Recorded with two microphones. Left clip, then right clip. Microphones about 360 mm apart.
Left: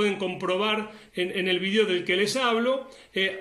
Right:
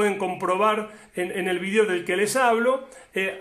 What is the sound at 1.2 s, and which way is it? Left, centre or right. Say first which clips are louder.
A man's voice: even; centre.